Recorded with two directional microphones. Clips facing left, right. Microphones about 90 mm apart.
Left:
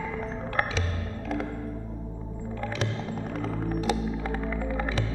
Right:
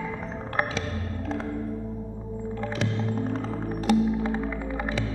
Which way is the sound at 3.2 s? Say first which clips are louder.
Right 2 dB; 35° right (ahead or behind).